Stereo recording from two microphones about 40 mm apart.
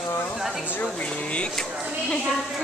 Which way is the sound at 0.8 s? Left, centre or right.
Left.